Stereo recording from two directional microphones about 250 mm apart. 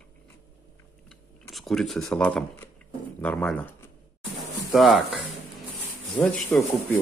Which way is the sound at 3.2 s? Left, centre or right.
Centre.